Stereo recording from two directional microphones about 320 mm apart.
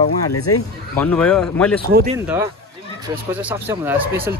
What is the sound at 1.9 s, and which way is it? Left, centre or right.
Speech, right.